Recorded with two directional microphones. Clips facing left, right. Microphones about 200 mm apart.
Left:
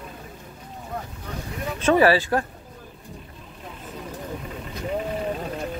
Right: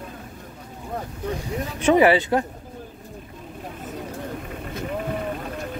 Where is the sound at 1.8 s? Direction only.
20° right (ahead or behind).